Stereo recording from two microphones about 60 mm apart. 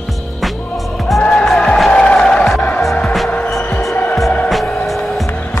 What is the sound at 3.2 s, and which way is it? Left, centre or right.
Music, left.